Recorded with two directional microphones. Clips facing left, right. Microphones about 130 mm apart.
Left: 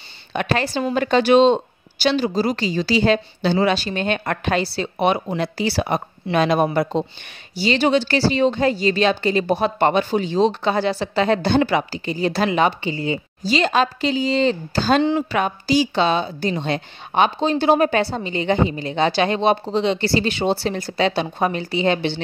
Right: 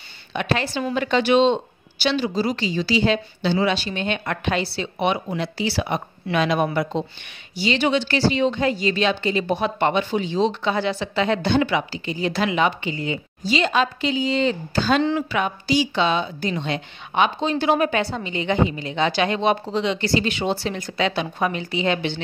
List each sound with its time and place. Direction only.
0.3 s speech: 45° left (ahead or behind)